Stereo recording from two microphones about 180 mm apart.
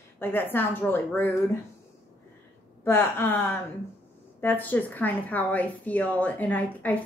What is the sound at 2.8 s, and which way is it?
Speech, 10° left (ahead or behind).